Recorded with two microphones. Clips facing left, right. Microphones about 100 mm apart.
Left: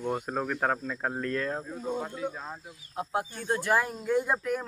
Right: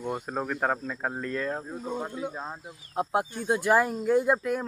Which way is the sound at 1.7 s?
20° right (ahead or behind).